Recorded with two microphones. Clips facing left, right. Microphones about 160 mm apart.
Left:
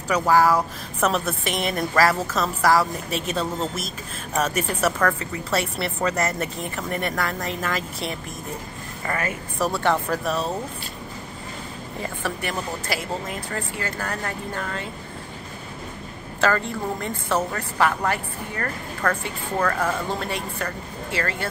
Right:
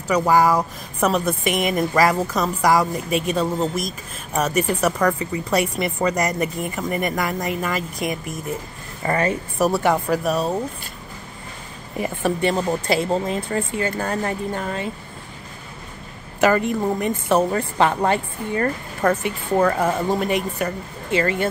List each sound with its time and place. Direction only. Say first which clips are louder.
0.1 s a woman's voice: right 2 dB; 10° right (ahead or behind)
7.4 s a woman's voice: right 3 dB; 5° right (ahead or behind)
9.0 s a woman's voice: right 7 dB; 30° right (ahead or behind)
9.8 s speech: right 3 dB; 5° right (ahead or behind)
12.0 s a woman's voice: right 8 dB; 20° right (ahead or behind)
16.3 s a woman's voice: right 5 dB; 15° right (ahead or behind)